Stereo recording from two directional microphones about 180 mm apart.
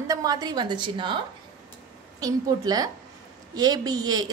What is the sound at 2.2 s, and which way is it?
A woman's voice, 20° right (ahead or behind).